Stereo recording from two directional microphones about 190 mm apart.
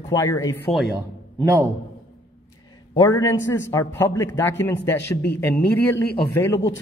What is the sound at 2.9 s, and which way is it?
A man's voice, 15° left (ahead or behind).